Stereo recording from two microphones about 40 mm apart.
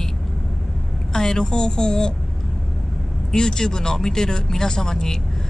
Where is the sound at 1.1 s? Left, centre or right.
Centre.